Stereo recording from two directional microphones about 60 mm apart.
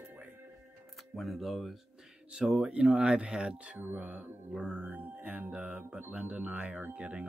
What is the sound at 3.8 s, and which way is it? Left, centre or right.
Speech, right.